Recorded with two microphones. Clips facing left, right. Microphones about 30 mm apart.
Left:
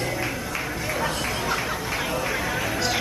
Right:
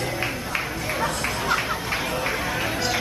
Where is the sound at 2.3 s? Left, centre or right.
Centre.